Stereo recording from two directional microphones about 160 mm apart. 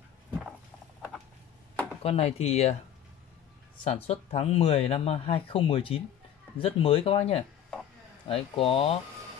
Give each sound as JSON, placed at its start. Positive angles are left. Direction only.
{"t": 0.3, "sound": "a sound", "side_deg": 0}
{"t": 2.0, "sound": "speech", "side_deg": 40}
{"t": 3.9, "sound": "speech", "side_deg": 40}